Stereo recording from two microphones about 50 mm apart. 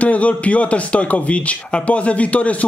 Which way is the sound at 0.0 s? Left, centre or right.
Left.